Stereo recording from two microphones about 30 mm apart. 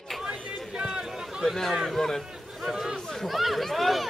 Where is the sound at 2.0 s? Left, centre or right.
Centre.